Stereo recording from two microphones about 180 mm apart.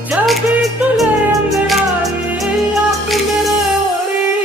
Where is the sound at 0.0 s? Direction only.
Centre (ahead or behind).